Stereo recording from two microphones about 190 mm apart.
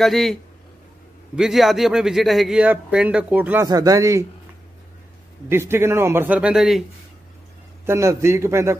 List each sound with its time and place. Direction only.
0.0 s a man's voice: centre (ahead or behind)
3.6 s a man's voice: 20° right (ahead or behind)
5.5 s a man's voice: 10° right (ahead or behind)
7.8 s a man's voice: 15° right (ahead or behind)